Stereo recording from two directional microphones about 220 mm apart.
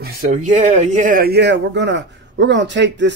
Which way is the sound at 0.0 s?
40° right (ahead or behind).